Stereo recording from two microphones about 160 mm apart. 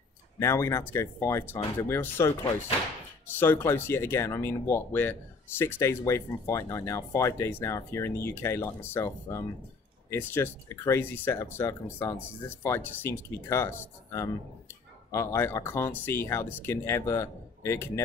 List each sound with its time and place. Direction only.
0.4 s speech: 15° left (ahead or behind)
3.3 s speech: 15° left (ahead or behind)